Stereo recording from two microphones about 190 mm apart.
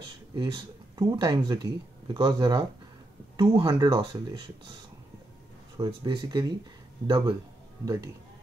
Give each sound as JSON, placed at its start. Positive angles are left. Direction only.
{"t": 0.3, "sound": "speech", "side_deg": -20}
{"t": 5.8, "sound": "speech", "side_deg": -20}